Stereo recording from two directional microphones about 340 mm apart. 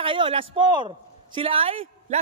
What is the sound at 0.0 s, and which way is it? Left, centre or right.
A man's voice, centre.